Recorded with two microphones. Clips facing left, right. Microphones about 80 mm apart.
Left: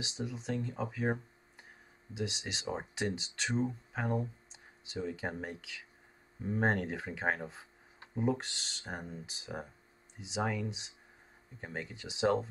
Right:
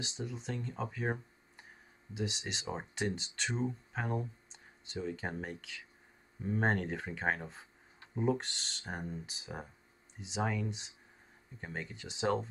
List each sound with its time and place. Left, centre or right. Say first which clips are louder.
0.0 s speech: left 2 dB; centre